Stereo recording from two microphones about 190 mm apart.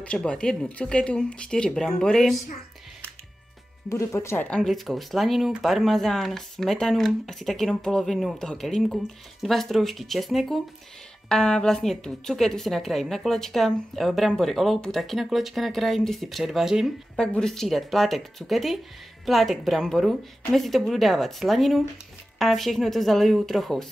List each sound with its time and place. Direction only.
0.0 s a woman's voice: 5° left (ahead or behind)
3.9 s a woman's voice: 15° left (ahead or behind); by 23.9 s centre (ahead or behind)